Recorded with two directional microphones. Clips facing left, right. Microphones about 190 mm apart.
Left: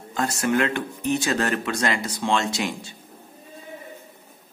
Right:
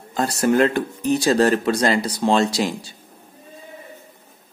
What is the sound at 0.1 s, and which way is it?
Speech, 35° right (ahead or behind).